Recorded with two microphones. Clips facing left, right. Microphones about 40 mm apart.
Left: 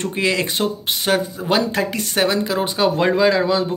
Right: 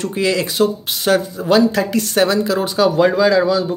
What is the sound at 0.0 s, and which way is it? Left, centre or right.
Speech, left.